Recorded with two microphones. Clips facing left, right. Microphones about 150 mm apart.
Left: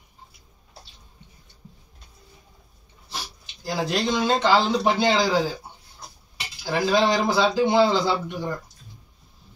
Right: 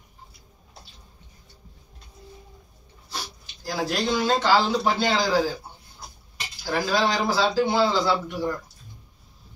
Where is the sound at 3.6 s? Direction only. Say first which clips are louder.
Left 1 dB; 20° left (ahead or behind).